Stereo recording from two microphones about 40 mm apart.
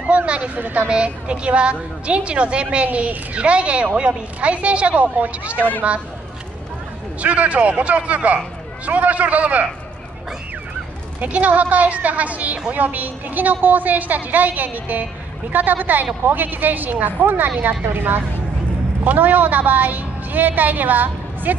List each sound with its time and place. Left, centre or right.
0.0 s a sound: right
0.6 s a woman's voice: right
0.8 s a woman's voice: right
7.2 s a woman's voice: right
11.2 s a woman's voice: right